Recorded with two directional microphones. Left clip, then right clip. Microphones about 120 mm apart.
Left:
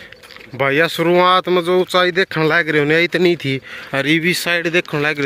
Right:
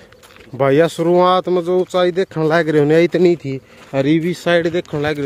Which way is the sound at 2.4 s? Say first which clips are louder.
Right 2 dB; 40° right (ahead or behind).